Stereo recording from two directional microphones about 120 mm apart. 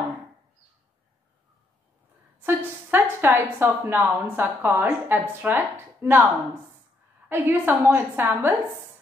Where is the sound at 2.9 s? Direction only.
20° right (ahead or behind).